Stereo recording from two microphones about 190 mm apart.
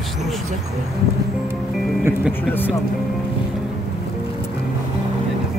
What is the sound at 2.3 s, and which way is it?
Speech, 10° left (ahead or behind).